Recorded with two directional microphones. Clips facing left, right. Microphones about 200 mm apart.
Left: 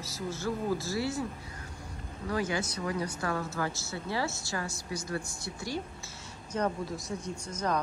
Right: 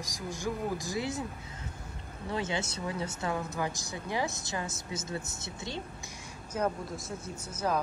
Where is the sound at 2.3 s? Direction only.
25° right (ahead or behind).